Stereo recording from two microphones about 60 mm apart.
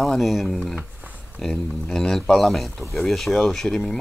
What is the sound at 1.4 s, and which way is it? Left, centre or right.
Speech, centre.